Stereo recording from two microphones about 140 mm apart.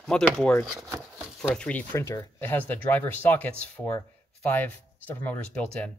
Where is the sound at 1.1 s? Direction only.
5° left (ahead or behind).